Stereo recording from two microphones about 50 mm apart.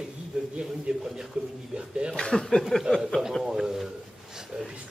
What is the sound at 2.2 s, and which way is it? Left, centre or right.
Speech, centre.